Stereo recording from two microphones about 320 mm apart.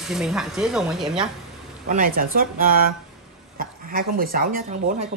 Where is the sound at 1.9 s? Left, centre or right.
Right.